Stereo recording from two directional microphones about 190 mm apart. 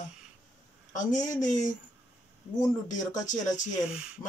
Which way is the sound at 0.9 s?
40° left (ahead or behind).